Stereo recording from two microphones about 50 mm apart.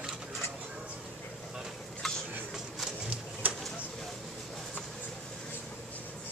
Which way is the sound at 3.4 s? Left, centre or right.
Right.